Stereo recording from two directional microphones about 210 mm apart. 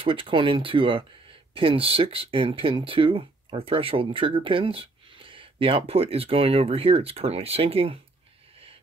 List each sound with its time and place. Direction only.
0.0 s speech: 25° right (ahead or behind)